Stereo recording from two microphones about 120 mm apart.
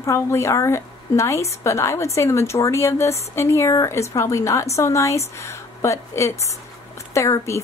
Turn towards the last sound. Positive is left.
turn(degrees=25)  # may be behind; listen again after turning